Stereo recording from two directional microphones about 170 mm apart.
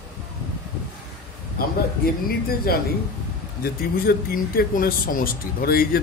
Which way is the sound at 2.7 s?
60° left (ahead or behind).